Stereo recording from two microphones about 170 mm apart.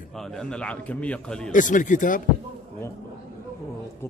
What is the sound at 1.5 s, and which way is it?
Speech, 50° left (ahead or behind).